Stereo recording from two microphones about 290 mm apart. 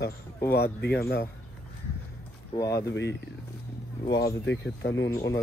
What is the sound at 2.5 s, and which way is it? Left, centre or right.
Speech, centre.